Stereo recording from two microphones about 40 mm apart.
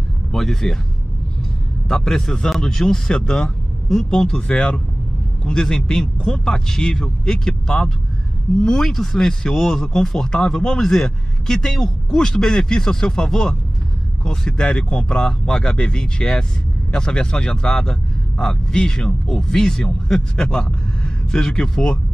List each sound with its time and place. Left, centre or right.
0.3 s speech: centre
1.9 s speech: centre
10.0 s speech: centre